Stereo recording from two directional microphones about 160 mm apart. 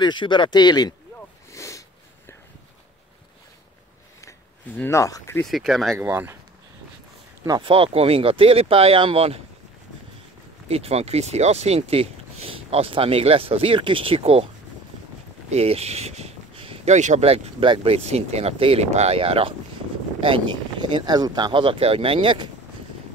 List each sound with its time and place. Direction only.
0.0 s speech: 30° left (ahead or behind)
1.5 s sniff: 20° left (ahead or behind)
4.2 s a sound: 15° left (ahead or behind)
5.4 s speech: centre (ahead or behind)
5.9 s speech: 15° right (ahead or behind)
7.4 s speech: 30° right (ahead or behind)
10.7 s speech: 40° right (ahead or behind)
15.5 s speech: 40° right (ahead or behind)